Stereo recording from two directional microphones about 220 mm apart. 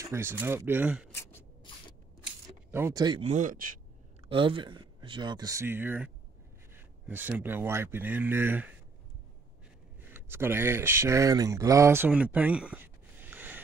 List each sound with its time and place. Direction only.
0.0 s speech: 10° right (ahead or behind)
2.2 s speech: 10° right (ahead or behind); by 3.7 s 35° right (ahead or behind)
4.3 s speech: 25° right (ahead or behind)
10.0 s speech: 10° right (ahead or behind)